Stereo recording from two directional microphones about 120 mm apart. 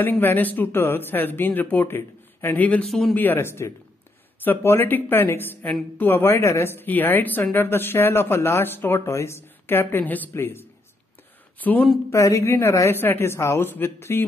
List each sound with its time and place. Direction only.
0.0 s speech: 15° left (ahead or behind)
2.9 s speech: centre (ahead or behind)
3.2 s speech: 20° left (ahead or behind)
12.1 s speech: 25° left (ahead or behind)